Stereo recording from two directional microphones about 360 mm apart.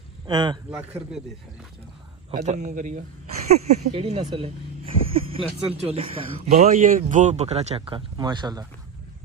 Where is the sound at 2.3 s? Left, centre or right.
Centre.